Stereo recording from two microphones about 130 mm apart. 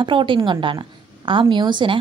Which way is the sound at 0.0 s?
40° right (ahead or behind).